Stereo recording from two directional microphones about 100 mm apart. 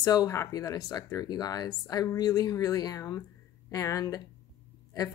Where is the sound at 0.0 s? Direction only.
35° left (ahead or behind).